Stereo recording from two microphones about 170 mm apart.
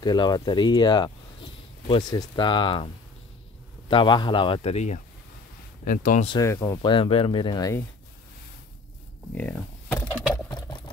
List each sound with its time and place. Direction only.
0.0 s speech: 25° left (ahead or behind)
3.9 s a man's voice: 30° left (ahead or behind); by 6.2 s 50° left (ahead or behind)
6.4 s speech: 15° left (ahead or behind)
6.8 s speech: 30° left (ahead or behind)
9.3 s a sound: 10° left (ahead or behind)